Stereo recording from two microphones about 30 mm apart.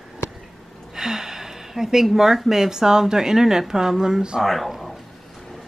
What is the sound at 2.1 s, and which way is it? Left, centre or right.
Speech, centre.